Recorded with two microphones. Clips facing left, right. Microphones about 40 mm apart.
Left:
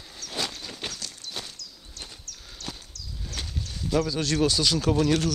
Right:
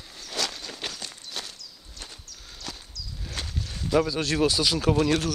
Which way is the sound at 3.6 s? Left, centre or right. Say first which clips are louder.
Right 2 dB; right.